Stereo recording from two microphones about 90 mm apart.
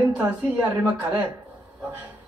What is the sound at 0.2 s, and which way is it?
Speech, 35° right (ahead or behind).